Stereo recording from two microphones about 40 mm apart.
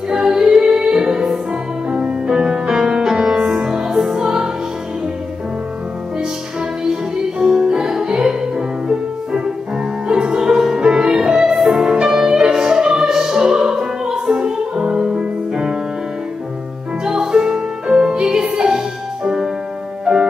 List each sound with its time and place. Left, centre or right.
0.1 s music: centre
1.9 s music: right
7.3 s music: centre
17.0 s music: centre
20.1 s music: right